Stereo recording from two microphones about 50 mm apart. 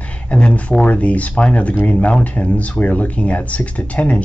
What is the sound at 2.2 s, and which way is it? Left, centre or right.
Speech, left.